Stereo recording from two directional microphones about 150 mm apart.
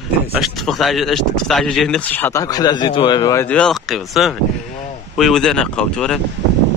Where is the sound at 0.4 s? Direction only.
Centre (ahead or behind); by 3.4 s 25° left (ahead or behind).